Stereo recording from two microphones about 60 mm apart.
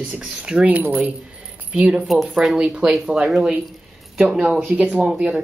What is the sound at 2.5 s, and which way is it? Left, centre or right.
Speech, centre.